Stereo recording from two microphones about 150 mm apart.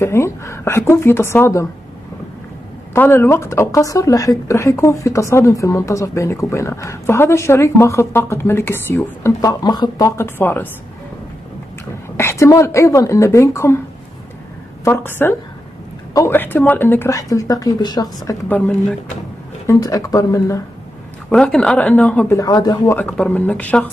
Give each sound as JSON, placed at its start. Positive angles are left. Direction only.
{"t": 0.0, "sound": "a woman's voice", "side_deg": 20}
{"t": 2.9, "sound": "speech", "side_deg": 15}
{"t": 12.2, "sound": "speech", "side_deg": 20}
{"t": 14.9, "sound": "a woman's voice", "side_deg": 15}
{"t": 19.7, "sound": "speech", "side_deg": 20}
{"t": 21.3, "sound": "a woman's voice", "side_deg": 5}
{"t": 22.3, "sound": "speech", "side_deg": 25}
{"t": 22.9, "sound": "a woman's voice", "side_deg": 5}